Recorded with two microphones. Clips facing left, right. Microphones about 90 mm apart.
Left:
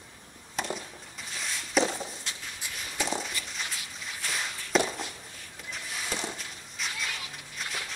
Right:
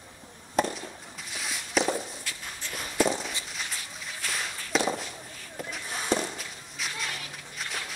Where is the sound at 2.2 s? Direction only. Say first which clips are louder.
Right 1 dB; 20° left (ahead or behind).